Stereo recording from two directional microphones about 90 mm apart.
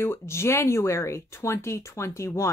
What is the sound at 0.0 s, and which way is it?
Speech, 30° left (ahead or behind).